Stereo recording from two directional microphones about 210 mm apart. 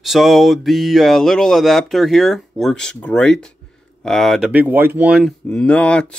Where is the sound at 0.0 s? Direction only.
Centre (ahead or behind).